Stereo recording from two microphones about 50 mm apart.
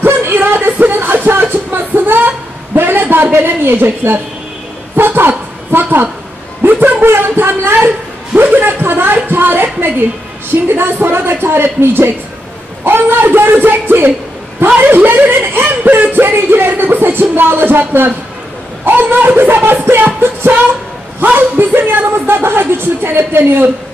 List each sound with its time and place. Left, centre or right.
0.0 s music: right
4.9 s a sound: right
6.6 s speech: right
21.2 s speech: right